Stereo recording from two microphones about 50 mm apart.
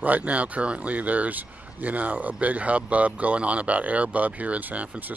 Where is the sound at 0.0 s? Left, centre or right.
Right.